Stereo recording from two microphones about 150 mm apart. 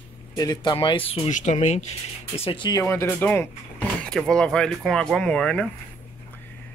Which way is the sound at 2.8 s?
15° left (ahead or behind).